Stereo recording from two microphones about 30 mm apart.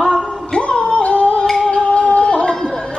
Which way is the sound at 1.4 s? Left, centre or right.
Centre.